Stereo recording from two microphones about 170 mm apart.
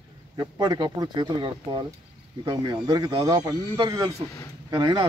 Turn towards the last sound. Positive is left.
turn(degrees=-25)  # may be behind; listen again after turning